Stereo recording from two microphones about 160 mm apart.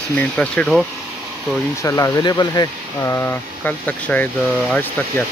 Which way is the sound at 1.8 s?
20° left (ahead or behind).